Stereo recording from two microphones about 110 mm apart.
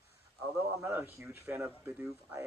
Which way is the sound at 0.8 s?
20° right (ahead or behind).